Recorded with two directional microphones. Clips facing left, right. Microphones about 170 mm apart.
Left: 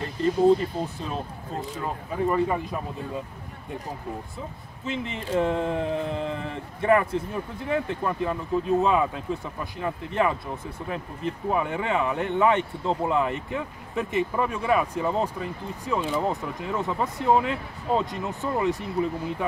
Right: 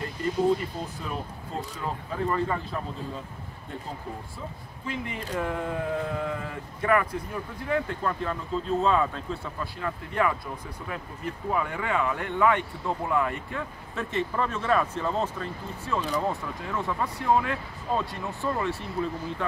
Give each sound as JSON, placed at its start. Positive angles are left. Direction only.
{"t": 0.8, "sound": "speech", "side_deg": 30}
{"t": 2.2, "sound": "speech", "side_deg": 15}
{"t": 4.8, "sound": "speech", "side_deg": 25}